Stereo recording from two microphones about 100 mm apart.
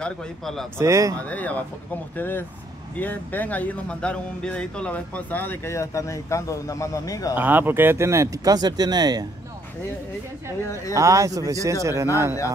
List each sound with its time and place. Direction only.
0.0 s speech: 5° left (ahead or behind)
0.7 s speech: 30° right (ahead or behind)
1.2 s speech: 15° left (ahead or behind); by 7.3 s 35° left (ahead or behind)
7.3 s speech: 20° right (ahead or behind); by 9.2 s 45° right (ahead or behind)
10.7 s speech: 30° left (ahead or behind)
11.0 s speech: 35° right (ahead or behind)